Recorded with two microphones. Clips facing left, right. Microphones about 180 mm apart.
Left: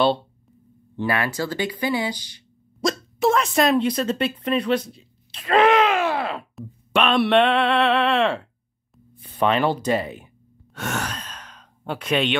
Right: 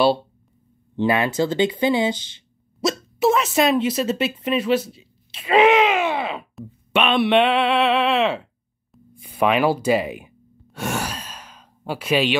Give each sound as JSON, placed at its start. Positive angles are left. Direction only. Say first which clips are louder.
{"t": 0.9, "sound": "speech", "louder": "right 5 dB", "side_deg": -20}
{"t": 2.8, "sound": "speech", "louder": "right 1 dB", "side_deg": -5}
{"t": 9.1, "sound": "gasp", "louder": "right 1 dB", "side_deg": -10}